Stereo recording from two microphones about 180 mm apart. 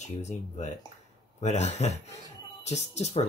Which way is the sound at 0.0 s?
40° left (ahead or behind).